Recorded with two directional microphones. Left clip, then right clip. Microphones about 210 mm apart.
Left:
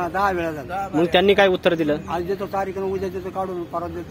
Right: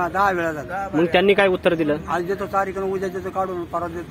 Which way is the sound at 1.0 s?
Centre (ahead or behind).